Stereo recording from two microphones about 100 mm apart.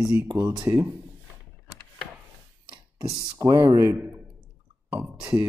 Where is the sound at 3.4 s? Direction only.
35° right (ahead or behind).